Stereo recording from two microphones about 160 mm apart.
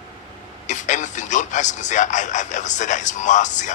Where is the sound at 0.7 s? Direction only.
50° left (ahead or behind).